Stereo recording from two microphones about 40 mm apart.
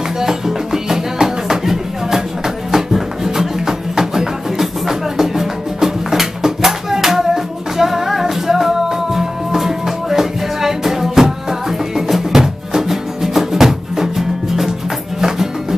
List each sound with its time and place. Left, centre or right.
0.2 s music: centre